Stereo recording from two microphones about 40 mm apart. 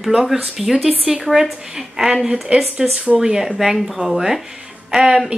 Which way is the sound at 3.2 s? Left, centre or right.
Centre.